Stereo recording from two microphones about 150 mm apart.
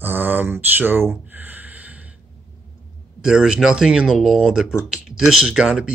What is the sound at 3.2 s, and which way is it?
Speech, 5° right (ahead or behind).